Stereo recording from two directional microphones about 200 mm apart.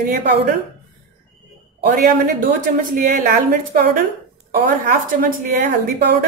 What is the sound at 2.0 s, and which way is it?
A woman's voice, 45° right (ahead or behind).